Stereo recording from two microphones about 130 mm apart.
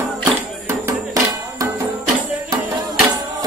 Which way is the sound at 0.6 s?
25° right (ahead or behind).